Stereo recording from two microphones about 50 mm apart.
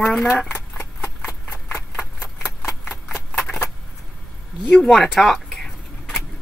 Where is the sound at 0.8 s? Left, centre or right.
Left.